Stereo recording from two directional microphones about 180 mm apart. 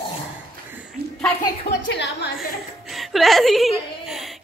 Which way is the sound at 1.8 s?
75° left (ahead or behind).